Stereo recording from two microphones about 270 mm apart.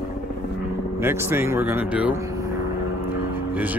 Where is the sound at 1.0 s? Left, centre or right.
Centre.